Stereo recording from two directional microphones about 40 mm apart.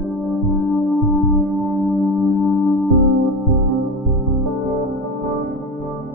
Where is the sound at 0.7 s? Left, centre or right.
Centre.